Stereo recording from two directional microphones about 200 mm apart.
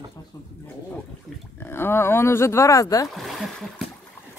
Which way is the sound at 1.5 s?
10° left (ahead or behind).